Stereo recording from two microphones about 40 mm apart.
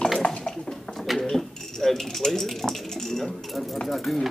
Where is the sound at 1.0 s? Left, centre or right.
Centre.